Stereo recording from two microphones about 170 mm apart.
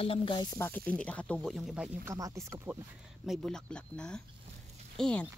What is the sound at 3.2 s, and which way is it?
Speech, 5° left (ahead or behind).